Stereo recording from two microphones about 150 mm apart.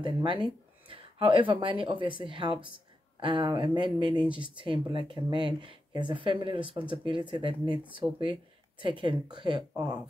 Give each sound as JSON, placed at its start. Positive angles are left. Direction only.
{"t": 0.0, "sound": "speech", "side_deg": -30}